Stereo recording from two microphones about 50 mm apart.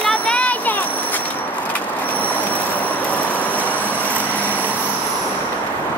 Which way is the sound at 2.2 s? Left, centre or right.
Left.